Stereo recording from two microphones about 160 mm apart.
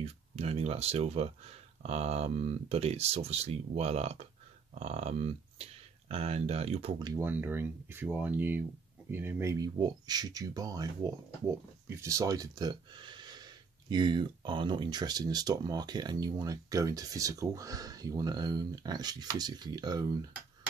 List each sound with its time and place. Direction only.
0.0 s speech: 40° right (ahead or behind)
7.0 s speech: 25° right (ahead or behind)
7.2 s speech: 10° right (ahead or behind)